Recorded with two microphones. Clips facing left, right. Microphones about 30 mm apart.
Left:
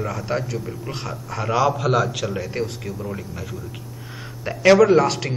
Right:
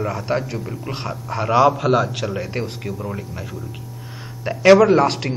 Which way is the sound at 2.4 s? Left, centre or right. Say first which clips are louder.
Even; right.